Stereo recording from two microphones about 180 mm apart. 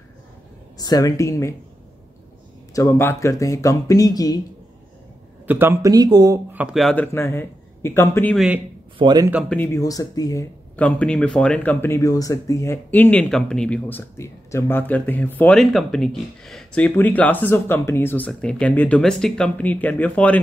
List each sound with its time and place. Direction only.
0.7 s a woman's voice: 20° left (ahead or behind)
2.7 s speech: 15° left (ahead or behind)
5.5 s speech: 10° right (ahead or behind)
6.5 s speech: 5° right (ahead or behind)
7.2 s a man's voice: 15° left (ahead or behind)
8.9 s speech: 25° right (ahead or behind)
9.5 s speech: 15° left (ahead or behind)